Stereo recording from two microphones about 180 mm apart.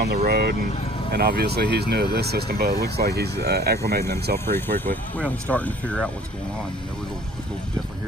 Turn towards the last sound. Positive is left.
turn(degrees=5)  # may be behind; listen again after turning